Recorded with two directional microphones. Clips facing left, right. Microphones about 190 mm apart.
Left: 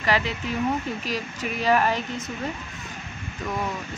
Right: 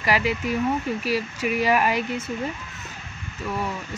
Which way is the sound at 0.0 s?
10° right (ahead or behind).